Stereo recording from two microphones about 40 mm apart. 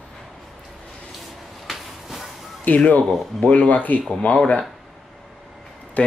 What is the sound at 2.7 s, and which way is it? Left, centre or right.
Speech, left.